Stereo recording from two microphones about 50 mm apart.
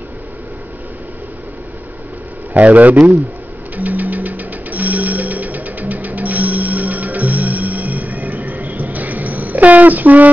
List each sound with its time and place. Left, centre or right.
2.5 s a man's voice: right
3.7 s music: right